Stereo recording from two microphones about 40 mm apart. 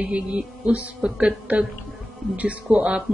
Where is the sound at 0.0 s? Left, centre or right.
Right.